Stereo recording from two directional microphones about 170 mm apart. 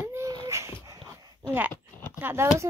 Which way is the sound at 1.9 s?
15° left (ahead or behind).